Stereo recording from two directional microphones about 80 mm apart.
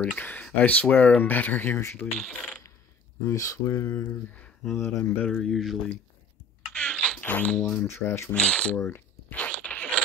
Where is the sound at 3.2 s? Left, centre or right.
Left.